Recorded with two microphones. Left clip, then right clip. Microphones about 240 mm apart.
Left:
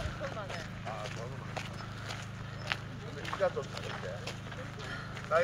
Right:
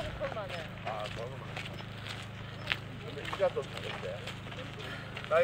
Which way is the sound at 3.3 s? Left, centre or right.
Right.